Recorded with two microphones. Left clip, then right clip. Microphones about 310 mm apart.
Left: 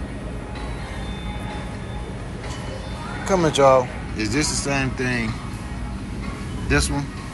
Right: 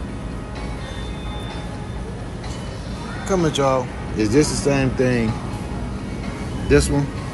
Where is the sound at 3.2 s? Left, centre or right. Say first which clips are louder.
Left 3 dB; centre.